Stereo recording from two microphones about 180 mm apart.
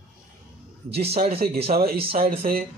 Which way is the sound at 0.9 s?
35° right (ahead or behind).